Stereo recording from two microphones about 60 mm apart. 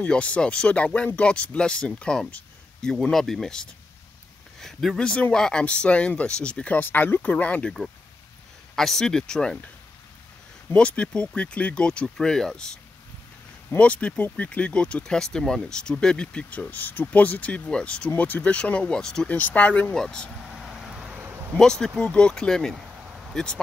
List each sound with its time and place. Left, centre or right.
0.0 s speech: left
2.8 s speech: centre
6.8 s speech: left
7.2 s speech: left
8.7 s speech: centre
10.8 s speech: centre
13.7 s speech: left
19.2 s speech: left
19.9 s speech: centre
20.6 s vehicle: centre
20.9 s a sound: centre
21.5 s speech: centre